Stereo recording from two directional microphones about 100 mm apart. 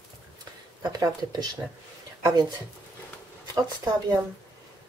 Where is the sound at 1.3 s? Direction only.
40° right (ahead or behind).